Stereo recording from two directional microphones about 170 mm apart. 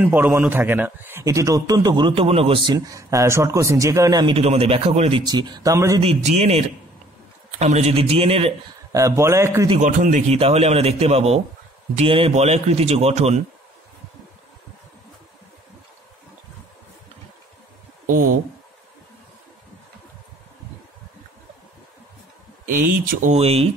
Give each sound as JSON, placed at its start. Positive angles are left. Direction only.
{"t": 0.0, "sound": "a man's voice", "side_deg": -10}
{"t": 2.7, "sound": "a man's voice", "side_deg": -20}
{"t": 4.3, "sound": "a man's voice", "side_deg": -35}
{"t": 5.2, "sound": "a man's voice", "side_deg": -25}
{"t": 6.0, "sound": "a man's voice", "side_deg": -35}
{"t": 8.9, "sound": "speech", "side_deg": -20}
{"t": 9.8, "sound": "a man's voice", "side_deg": -50}
{"t": 18.0, "sound": "speech", "side_deg": -55}
{"t": 23.3, "sound": "a man's voice", "side_deg": -35}